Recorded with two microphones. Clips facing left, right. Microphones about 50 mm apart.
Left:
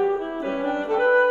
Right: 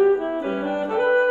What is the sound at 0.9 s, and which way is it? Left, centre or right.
Brass instrument, centre.